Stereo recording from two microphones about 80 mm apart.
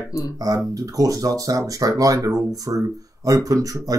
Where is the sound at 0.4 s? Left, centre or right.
Right.